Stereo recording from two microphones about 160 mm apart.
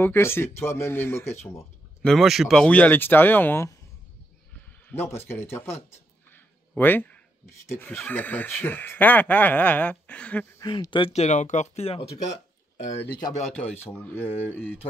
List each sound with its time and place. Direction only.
0.0 s speech: 15° left (ahead or behind)
2.0 s speech: centre (ahead or behind)
4.8 s speech: 15° left (ahead or behind)
10.6 s speech: 25° left (ahead or behind)
11.1 s speech: 50° left (ahead or behind)
13.0 s speech: 10° left (ahead or behind)